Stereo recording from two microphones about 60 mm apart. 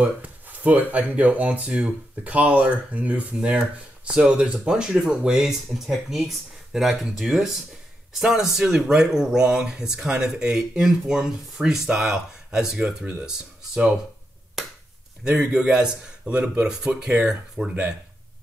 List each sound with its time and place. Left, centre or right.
0.0 s a sound: right
0.9 s speech: right
3.4 s speech: centre
15.5 s speech: centre